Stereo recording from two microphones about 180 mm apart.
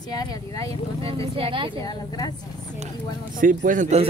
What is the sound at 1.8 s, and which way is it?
Speech, 20° left (ahead or behind).